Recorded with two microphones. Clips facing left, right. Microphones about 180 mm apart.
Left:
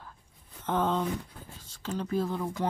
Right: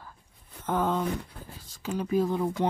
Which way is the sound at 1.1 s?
70° right (ahead or behind).